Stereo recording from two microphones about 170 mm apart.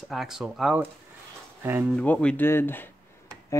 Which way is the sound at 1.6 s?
10° right (ahead or behind).